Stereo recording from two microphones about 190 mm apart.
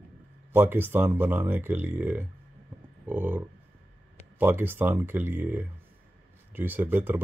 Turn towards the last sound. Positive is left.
turn(degrees=-10)  # may be behind; listen again after turning